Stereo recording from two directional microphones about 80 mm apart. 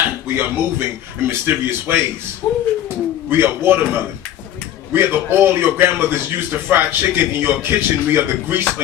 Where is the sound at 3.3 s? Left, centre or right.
Right.